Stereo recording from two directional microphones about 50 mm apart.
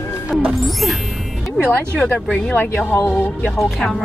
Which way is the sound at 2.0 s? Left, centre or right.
Left.